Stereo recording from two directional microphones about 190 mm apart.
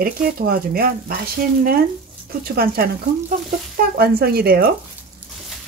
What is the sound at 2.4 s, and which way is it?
Speech, 55° right (ahead or behind).